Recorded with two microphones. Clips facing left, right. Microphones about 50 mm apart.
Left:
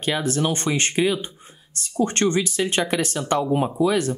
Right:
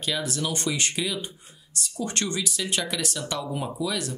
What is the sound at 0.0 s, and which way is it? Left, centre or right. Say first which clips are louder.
Speech: left 6 dB; left.